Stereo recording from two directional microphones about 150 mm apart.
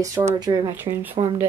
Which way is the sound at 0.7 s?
15° right (ahead or behind).